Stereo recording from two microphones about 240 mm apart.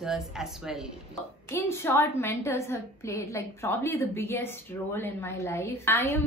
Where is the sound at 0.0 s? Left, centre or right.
Centre.